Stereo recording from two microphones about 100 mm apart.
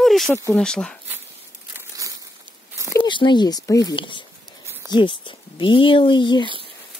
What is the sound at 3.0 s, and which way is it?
Speech, 50° left (ahead or behind).